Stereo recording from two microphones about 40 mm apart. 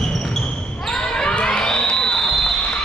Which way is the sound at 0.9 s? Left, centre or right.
Centre.